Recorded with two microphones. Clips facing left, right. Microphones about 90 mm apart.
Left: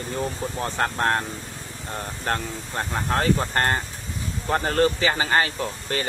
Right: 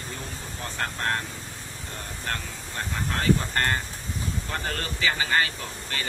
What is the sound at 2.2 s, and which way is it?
Speech, 40° left (ahead or behind).